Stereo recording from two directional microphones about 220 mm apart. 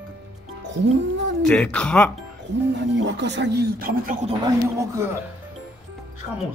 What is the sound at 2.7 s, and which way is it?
Speech, 55° right (ahead or behind).